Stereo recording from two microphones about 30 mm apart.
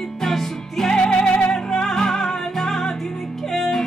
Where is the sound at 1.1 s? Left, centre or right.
Left.